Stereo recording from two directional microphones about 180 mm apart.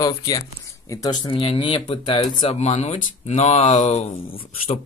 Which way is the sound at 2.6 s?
35° left (ahead or behind).